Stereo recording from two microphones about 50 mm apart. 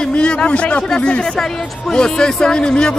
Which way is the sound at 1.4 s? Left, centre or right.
Centre.